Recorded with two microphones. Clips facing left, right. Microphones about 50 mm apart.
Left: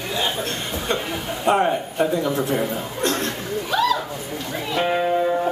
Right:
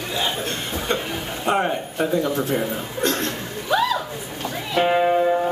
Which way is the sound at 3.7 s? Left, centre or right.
Centre.